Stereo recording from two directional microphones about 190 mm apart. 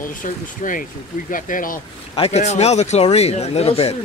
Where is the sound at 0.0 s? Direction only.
45° left (ahead or behind).